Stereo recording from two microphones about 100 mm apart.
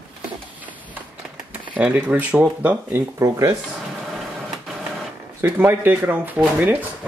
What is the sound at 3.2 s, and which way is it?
Speech, 30° right (ahead or behind).